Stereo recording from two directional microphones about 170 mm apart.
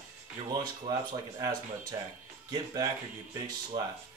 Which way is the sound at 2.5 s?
25° right (ahead or behind).